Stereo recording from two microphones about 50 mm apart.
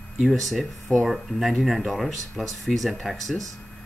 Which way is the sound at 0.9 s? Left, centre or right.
Left.